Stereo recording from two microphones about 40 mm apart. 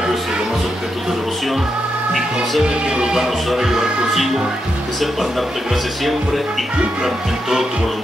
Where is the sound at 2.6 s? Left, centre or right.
Right.